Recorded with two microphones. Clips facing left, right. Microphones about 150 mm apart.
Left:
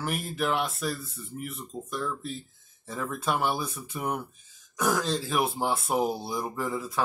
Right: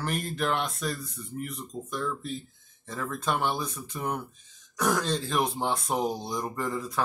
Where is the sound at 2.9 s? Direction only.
5° left (ahead or behind).